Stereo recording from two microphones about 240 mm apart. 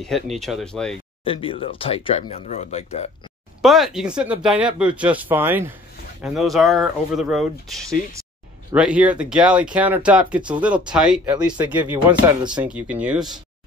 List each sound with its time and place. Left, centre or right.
0.0 s speech: centre
1.2 s speech: left
3.6 s speech: centre